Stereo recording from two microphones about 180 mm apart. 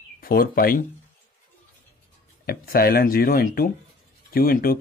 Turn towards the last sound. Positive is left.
turn(degrees=55)  # may be behind; listen again after turning